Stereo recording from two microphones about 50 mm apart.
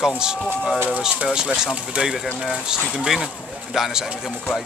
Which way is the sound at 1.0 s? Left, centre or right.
Centre.